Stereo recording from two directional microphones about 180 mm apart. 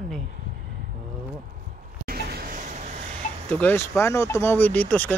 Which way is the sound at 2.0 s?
55° right (ahead or behind).